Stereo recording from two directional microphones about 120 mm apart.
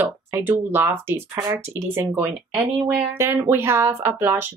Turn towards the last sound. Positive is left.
turn(degrees=-20)  # may be behind; listen again after turning